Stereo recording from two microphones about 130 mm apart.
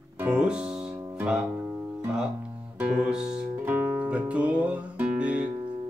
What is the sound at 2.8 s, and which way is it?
Music, 5° right (ahead or behind).